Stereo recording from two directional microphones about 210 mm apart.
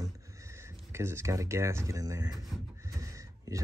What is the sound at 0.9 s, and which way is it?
Speech, 10° right (ahead or behind).